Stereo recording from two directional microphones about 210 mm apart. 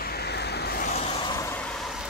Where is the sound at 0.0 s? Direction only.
50° left (ahead or behind).